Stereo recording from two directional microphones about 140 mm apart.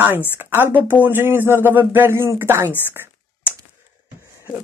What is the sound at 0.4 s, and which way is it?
Speech, 15° right (ahead or behind).